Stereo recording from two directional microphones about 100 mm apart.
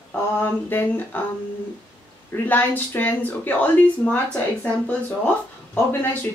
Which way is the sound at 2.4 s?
20° left (ahead or behind).